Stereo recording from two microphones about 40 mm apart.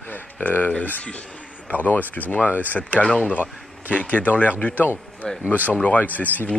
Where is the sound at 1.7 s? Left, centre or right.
Left.